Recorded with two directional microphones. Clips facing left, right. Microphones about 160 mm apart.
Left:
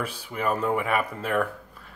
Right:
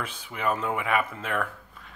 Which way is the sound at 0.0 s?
35° left (ahead or behind).